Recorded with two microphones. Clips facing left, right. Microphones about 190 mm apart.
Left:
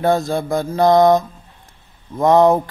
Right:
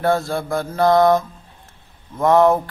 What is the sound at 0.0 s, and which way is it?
Mantra, 20° left (ahead or behind).